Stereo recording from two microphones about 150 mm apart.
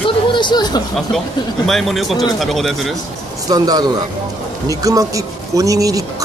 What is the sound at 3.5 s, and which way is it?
Speech, 25° right (ahead or behind).